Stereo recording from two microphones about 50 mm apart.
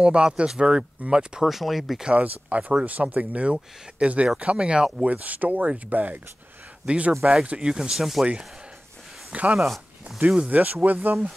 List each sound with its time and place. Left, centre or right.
0.0 s speech: centre
1.4 s speech: centre
2.1 s speech: right
5.0 s speech: right
6.9 s speech: centre
7.8 s speech: centre
9.3 s speech: right
10.1 s speech: centre
10.5 s speech: right